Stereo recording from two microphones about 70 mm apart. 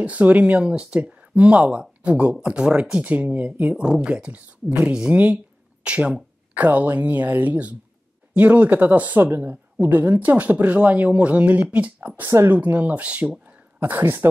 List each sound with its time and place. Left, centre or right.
0.0 s speech: right
3.7 s speech: centre; by 14.3 s right